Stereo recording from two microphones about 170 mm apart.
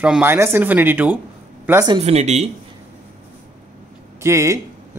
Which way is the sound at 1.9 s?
40° right (ahead or behind).